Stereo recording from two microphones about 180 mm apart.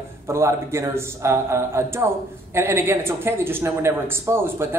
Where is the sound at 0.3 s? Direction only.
15° right (ahead or behind).